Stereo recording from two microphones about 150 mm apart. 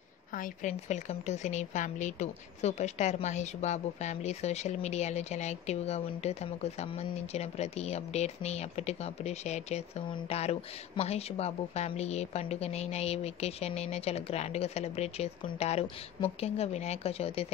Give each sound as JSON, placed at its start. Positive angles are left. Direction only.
{"t": 0.3, "sound": "a woman's voice", "side_deg": 60}